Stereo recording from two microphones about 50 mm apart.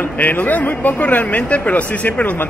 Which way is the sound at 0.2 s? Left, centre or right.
Left.